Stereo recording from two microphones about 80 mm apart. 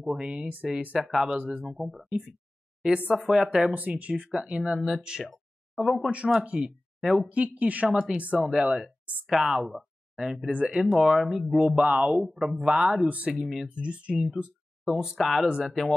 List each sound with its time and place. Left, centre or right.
0.0 s speech: centre
0.9 s speech: centre
6.0 s speech: centre
7.0 s speech: centre
7.2 s speech: centre
15.0 s speech: centre